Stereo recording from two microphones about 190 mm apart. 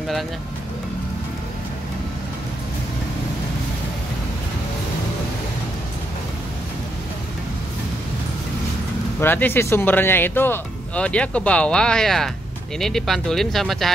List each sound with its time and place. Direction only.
9.2 s speech: 10° left (ahead or behind)